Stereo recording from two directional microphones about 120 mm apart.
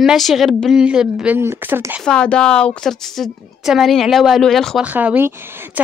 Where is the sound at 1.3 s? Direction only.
20° right (ahead or behind).